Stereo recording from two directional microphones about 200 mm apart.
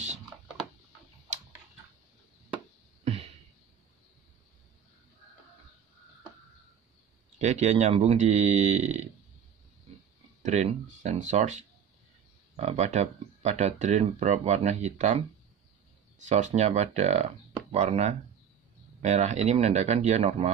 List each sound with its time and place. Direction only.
3.0 s a sound: 30° right (ahead or behind)
7.3 s speech: 35° right (ahead or behind)
10.4 s speech: 35° right (ahead or behind)
16.3 s speech: 35° right (ahead or behind)